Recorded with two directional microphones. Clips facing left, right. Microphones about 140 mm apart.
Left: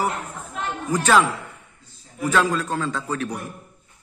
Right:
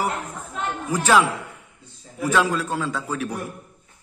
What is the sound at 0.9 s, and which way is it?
A man's voice, 10° right (ahead or behind).